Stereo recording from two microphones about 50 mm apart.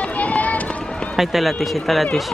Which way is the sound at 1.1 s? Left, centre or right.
Centre.